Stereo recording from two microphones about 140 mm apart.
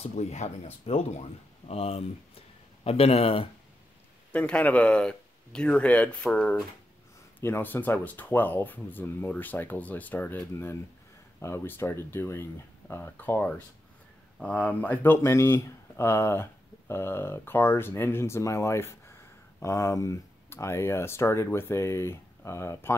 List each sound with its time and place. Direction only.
0.0 s speech: 50° left (ahead or behind)
4.3 s speech: 10° left (ahead or behind)